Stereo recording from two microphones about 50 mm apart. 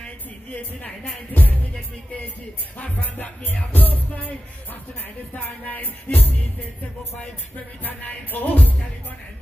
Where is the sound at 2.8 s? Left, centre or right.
Left.